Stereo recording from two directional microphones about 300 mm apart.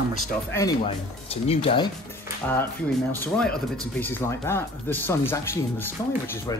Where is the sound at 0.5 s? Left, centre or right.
Centre.